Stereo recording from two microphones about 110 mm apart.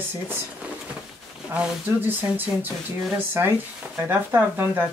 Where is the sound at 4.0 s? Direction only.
20° right (ahead or behind).